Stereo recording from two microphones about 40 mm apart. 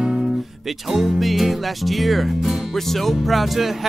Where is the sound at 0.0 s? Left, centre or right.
Centre.